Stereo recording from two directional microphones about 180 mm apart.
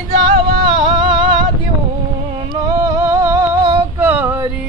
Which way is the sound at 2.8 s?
20° right (ahead or behind).